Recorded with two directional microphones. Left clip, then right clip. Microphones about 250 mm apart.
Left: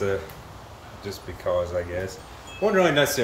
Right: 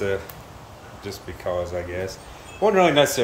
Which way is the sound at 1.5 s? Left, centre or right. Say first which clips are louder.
Left 1 dB; centre.